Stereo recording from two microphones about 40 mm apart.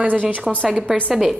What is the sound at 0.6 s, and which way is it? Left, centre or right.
Speech, right.